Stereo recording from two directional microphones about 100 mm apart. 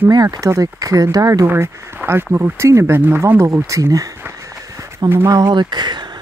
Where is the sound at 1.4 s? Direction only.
20° right (ahead or behind).